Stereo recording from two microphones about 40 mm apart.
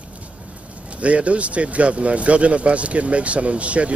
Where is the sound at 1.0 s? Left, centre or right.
Right.